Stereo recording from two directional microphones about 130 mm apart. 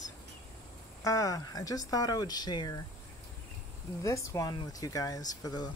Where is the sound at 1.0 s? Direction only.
25° left (ahead or behind).